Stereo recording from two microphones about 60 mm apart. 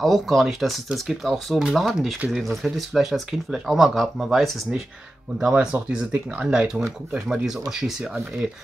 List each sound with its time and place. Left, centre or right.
0.0 s speech: centre
5.5 s speech: centre